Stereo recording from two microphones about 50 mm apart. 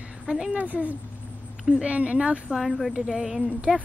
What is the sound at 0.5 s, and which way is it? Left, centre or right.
A woman's voice, right.